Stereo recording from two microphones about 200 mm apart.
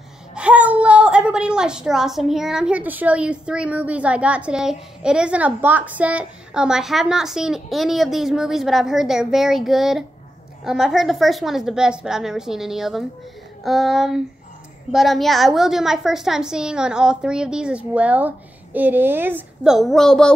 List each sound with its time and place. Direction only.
0.3 s a woman's voice: 5° right (ahead or behind)